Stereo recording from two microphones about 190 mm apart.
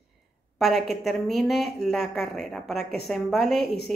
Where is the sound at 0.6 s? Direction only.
Centre (ahead or behind).